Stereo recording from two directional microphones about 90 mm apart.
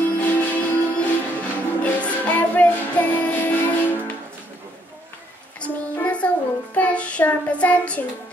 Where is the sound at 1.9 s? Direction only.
15° left (ahead or behind).